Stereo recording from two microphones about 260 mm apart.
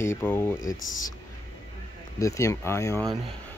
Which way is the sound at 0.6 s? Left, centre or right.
Left.